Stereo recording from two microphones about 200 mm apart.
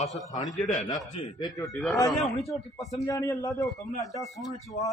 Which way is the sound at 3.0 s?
15° left (ahead or behind).